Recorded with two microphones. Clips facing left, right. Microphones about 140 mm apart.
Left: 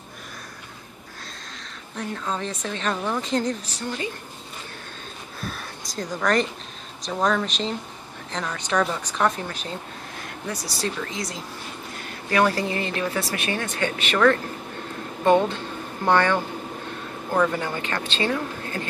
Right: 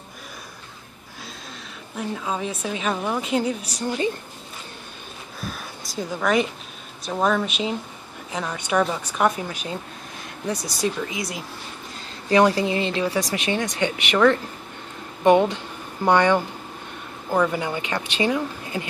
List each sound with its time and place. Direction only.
2.0 s speech: 10° right (ahead or behind)
5.4 s a sound: centre (ahead or behind)
7.0 s speech: 5° right (ahead or behind)